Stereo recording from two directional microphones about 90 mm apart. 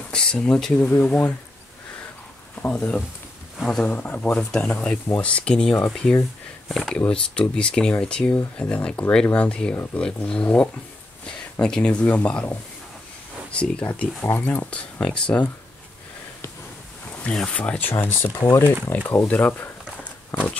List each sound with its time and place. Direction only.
0.1 s speech: 10° left (ahead or behind)
2.5 s speech: 20° left (ahead or behind)
4.4 s speech: 5° left (ahead or behind)
13.5 s speech: 15° left (ahead or behind)
17.2 s speech: 15° left (ahead or behind)